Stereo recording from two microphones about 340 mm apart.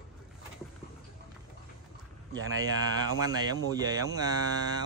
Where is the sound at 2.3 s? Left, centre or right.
Right.